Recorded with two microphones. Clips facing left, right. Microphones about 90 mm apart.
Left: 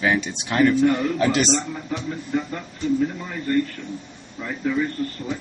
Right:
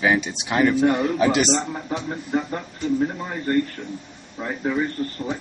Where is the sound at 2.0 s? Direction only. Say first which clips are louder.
Even; 35° right (ahead or behind).